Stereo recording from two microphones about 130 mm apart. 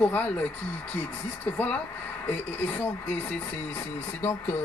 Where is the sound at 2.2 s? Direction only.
15° left (ahead or behind).